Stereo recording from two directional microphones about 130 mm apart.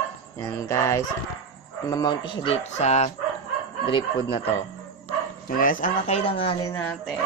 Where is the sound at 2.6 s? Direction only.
60° left (ahead or behind).